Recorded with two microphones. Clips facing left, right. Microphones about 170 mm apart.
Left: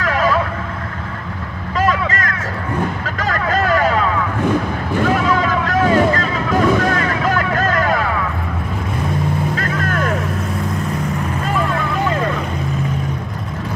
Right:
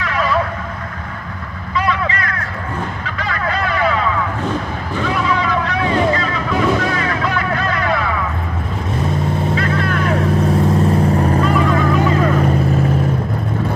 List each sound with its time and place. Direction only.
0.0 s vehicle: 45° left (ahead or behind)
1.8 s vehicle: 45° left (ahead or behind)
4.9 s boat: 45° left (ahead or behind)
9.6 s vehicle: 45° left (ahead or behind)
10.5 s vehicle: 30° right (ahead or behind)